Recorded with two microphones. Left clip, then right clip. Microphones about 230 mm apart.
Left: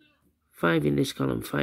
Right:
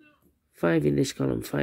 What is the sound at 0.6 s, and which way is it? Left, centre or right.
Speech, centre.